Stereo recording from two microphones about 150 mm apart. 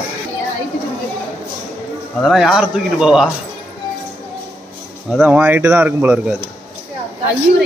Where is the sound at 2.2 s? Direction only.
Centre (ahead or behind).